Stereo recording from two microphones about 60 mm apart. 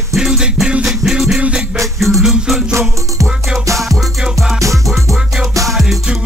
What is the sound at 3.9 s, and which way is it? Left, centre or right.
Music, centre.